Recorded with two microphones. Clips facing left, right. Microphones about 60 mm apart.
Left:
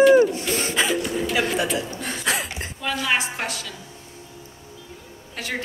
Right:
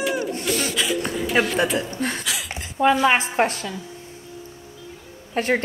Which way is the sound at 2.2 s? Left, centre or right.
Left.